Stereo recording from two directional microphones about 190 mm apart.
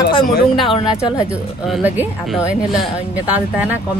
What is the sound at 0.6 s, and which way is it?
Speech, 25° left (ahead or behind).